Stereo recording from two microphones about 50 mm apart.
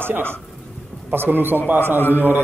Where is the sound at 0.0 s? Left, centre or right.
Right.